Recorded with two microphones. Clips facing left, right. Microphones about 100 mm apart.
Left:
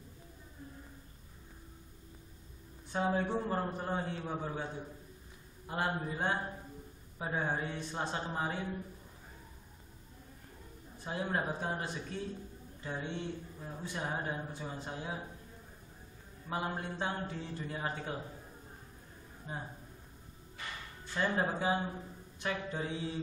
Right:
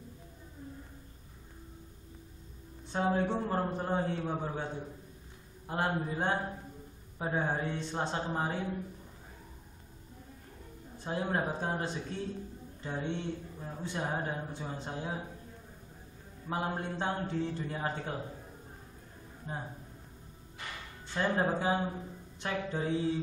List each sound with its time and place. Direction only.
2.9 s a woman's voice: 25° right (ahead or behind)
11.1 s speech: 30° right (ahead or behind)
16.4 s speech: 25° right (ahead or behind)
19.5 s a woman's voice: 35° right (ahead or behind)
21.1 s a woman's voice: 30° right (ahead or behind)